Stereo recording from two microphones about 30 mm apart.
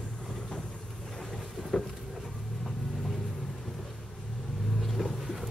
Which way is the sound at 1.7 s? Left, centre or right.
Centre.